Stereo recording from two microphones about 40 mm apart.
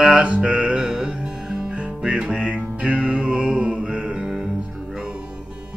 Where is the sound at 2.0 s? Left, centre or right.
Right.